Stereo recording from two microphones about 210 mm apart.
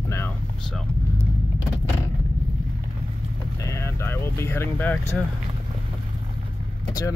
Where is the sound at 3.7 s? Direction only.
10° left (ahead or behind).